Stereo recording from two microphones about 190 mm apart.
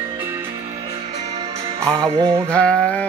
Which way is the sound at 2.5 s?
5° left (ahead or behind).